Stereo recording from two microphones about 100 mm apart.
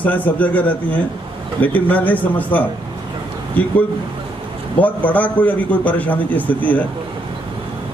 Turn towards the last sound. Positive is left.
turn(degrees=15)  # may be behind; listen again after turning